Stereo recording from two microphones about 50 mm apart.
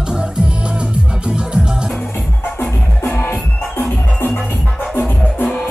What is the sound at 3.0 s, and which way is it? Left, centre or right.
Music, left.